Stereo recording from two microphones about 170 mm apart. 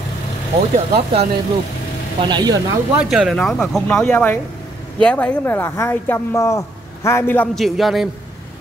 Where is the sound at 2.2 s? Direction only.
25° right (ahead or behind).